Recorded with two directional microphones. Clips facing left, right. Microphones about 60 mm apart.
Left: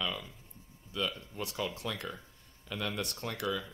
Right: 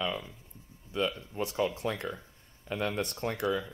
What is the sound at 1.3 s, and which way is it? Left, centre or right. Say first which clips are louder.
Speech: right 6 dB; right.